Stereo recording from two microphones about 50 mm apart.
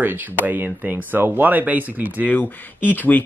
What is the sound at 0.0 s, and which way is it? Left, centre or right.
Speech, right.